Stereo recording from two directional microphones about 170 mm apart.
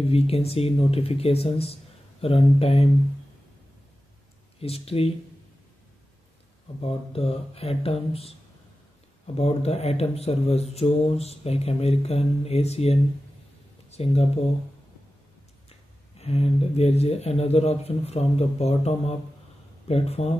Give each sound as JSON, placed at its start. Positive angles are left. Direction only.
{"t": 0.1, "sound": "speech", "side_deg": 35}
{"t": 4.6, "sound": "speech", "side_deg": 35}
{"t": 6.8, "sound": "speech", "side_deg": 35}
{"t": 9.4, "sound": "speech", "side_deg": 35}
{"t": 16.2, "sound": "speech", "side_deg": 40}